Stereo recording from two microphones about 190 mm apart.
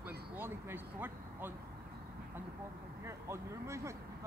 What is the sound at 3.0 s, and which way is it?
Speech, 15° right (ahead or behind).